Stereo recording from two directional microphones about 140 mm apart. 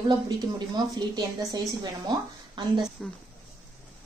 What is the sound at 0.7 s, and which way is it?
A woman's voice, 30° right (ahead or behind).